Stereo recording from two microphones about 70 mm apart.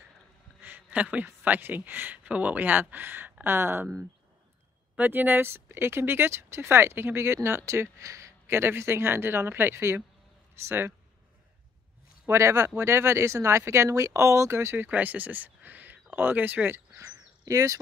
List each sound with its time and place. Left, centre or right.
0.6 s a sound: right
1.2 s speech: right
4.9 s speech: right
12.3 s speech: right
14.9 s speech: right
16.9 s bird: right